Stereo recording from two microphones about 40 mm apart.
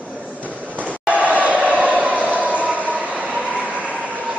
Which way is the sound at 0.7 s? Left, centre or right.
Right.